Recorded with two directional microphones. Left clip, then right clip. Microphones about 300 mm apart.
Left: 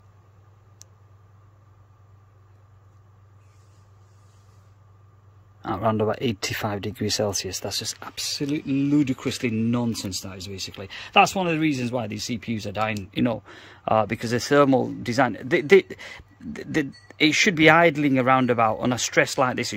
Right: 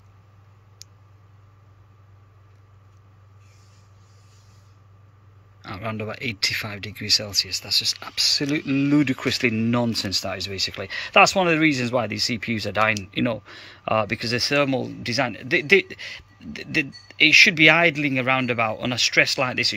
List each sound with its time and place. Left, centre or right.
5.6 s speech: centre
8.0 s speech: centre